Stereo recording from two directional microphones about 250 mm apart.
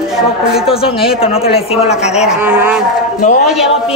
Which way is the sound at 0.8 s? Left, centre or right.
Left.